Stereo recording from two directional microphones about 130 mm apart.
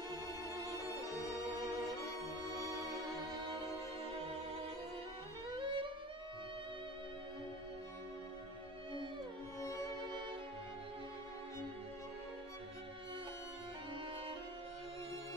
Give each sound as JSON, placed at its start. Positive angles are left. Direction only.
{"t": 5.5, "sound": "music", "side_deg": -40}